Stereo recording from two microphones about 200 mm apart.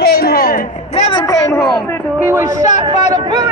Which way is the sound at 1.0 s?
20° left (ahead or behind).